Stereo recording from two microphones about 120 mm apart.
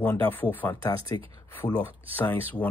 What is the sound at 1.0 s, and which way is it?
Speech, 50° right (ahead or behind).